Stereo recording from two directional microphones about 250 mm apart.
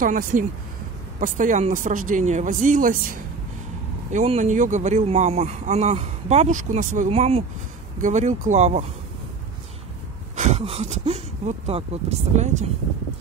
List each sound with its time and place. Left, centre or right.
0.0 s speech: right
10.3 s speech: right